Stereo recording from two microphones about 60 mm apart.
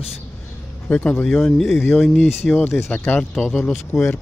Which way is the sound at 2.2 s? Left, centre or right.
Left.